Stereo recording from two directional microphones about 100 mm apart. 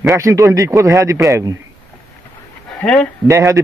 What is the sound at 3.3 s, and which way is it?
Speech, 30° right (ahead or behind).